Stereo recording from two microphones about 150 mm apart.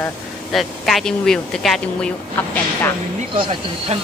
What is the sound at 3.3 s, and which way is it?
Speech, 35° right (ahead or behind).